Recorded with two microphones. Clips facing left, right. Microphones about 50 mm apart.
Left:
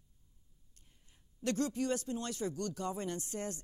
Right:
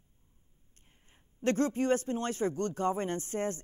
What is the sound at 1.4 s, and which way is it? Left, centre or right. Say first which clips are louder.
Speech: right 6 dB; right.